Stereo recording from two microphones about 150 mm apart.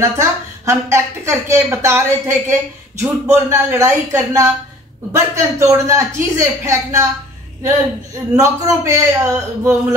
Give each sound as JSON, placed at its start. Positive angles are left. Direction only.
{"t": 0.1, "sound": "a woman's voice", "side_deg": -20}
{"t": 8.4, "sound": "speech", "side_deg": -20}